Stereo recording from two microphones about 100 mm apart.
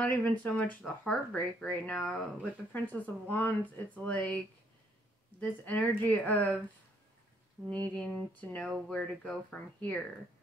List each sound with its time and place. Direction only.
0.0 s speech: 15° left (ahead or behind)
7.7 s speech: 15° left (ahead or behind)